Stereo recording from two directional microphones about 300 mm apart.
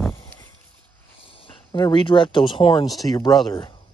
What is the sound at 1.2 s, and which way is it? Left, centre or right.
Speech, centre.